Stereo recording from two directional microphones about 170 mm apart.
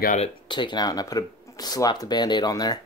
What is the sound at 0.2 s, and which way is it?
Speech, 30° left (ahead or behind).